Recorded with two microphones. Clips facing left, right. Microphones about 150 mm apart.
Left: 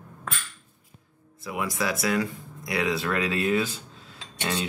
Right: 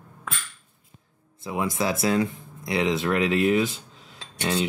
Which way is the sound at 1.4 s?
25° right (ahead or behind).